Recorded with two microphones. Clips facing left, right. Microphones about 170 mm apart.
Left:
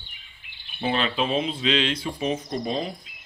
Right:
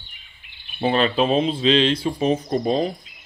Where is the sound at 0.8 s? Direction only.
40° right (ahead or behind).